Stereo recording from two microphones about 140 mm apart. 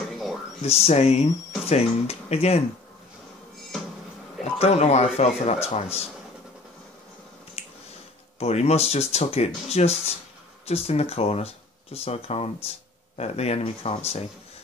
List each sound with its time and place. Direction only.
0.1 s a sound: centre (ahead or behind)
0.6 s speech: 50° left (ahead or behind)
4.6 s speech: 50° left (ahead or behind)
7.6 s finger snapping: 45° left (ahead or behind)
8.4 s speech: 50° left (ahead or behind)